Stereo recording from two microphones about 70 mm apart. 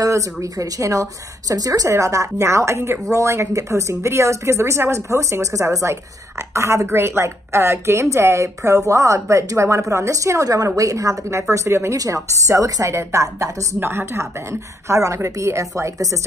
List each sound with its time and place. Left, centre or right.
0.0 s speech: right
13.7 s speech: right